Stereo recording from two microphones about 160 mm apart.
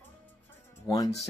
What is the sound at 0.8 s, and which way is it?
Speech, 25° left (ahead or behind).